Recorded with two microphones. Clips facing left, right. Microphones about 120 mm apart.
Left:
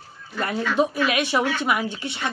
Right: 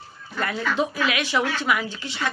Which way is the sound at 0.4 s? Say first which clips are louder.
Left 2 dB; 30° left (ahead or behind).